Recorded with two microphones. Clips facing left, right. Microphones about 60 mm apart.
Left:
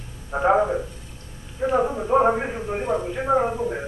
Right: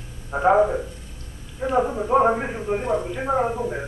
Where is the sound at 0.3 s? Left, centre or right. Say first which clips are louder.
Right 2 dB; centre.